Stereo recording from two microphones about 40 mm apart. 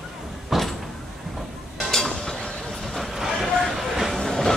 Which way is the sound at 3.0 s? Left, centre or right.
Centre.